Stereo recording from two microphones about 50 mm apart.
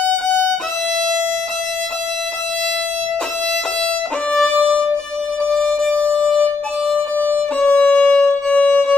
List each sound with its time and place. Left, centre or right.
5.5 s music: centre
7.6 s music: left